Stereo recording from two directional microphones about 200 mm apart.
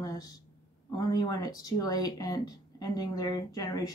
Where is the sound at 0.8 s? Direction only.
20° left (ahead or behind).